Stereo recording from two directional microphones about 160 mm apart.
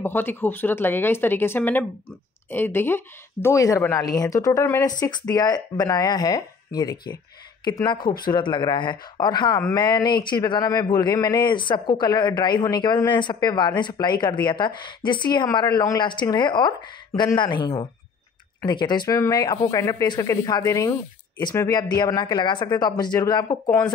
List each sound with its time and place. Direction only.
0.0 s speech: 15° left (ahead or behind)